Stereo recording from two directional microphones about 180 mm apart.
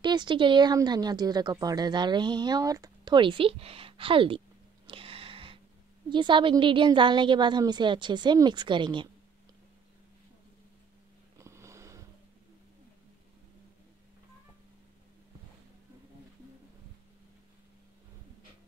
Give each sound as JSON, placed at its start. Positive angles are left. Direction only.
{"t": 0.0, "sound": "speech", "side_deg": -25}
{"t": 4.8, "sound": "a sound", "side_deg": -30}
{"t": 6.0, "sound": "speech", "side_deg": -25}
{"t": 11.3, "sound": "sniff", "side_deg": -15}